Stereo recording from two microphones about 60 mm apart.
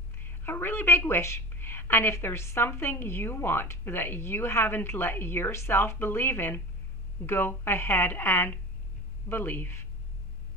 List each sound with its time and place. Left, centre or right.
0.4 s a woman's voice: left